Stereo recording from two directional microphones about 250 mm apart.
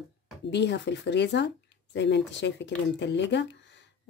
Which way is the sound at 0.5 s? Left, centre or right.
Left.